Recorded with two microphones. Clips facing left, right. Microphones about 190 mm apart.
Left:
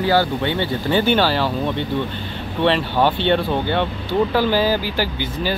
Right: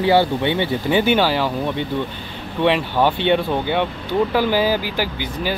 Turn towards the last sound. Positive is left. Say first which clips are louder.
# left 1 dB
turn(degrees=-10)  # may be behind; listen again after turning